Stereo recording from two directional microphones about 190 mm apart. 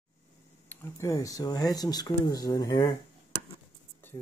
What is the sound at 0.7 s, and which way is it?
Speech, 15° left (ahead or behind).